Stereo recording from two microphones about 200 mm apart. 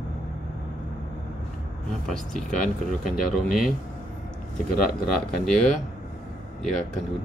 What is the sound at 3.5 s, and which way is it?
Speech, centre (ahead or behind).